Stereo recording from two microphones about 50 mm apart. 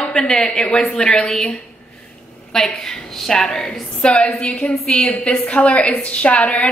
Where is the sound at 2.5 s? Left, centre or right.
Centre.